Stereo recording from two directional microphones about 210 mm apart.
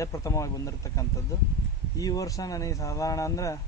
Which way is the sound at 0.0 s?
15° left (ahead or behind).